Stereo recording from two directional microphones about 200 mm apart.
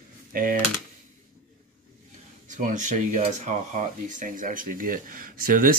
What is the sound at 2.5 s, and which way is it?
Speech, 40° right (ahead or behind).